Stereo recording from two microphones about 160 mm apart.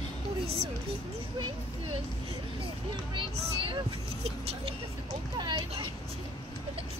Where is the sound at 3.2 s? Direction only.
30° right (ahead or behind).